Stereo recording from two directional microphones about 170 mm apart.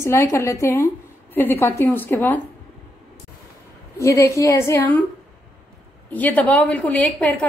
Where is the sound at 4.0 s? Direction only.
15° left (ahead or behind).